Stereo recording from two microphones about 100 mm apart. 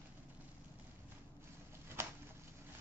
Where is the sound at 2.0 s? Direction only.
25° right (ahead or behind).